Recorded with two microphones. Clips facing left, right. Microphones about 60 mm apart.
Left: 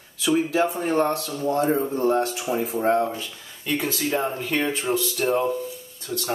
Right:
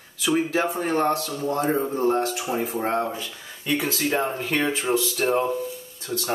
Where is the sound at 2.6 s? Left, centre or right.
Right.